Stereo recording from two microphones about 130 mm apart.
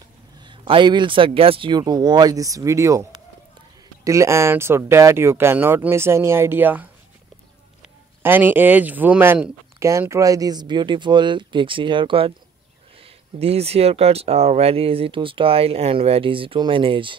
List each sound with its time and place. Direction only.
0.4 s speech: 40° right (ahead or behind); by 6.9 s 15° right (ahead or behind)
8.2 s speech: 15° right (ahead or behind); by 17.1 s 40° right (ahead or behind)